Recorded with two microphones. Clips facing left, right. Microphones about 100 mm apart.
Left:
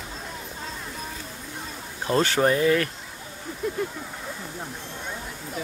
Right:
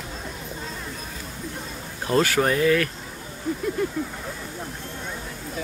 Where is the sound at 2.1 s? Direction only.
25° left (ahead or behind).